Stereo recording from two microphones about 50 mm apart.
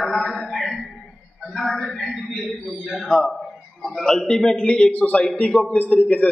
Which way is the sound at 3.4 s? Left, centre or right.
Centre.